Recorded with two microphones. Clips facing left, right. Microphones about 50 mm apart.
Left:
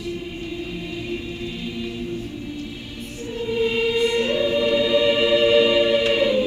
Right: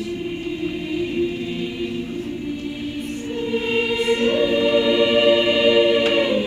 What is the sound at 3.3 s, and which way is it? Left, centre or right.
Choir, right.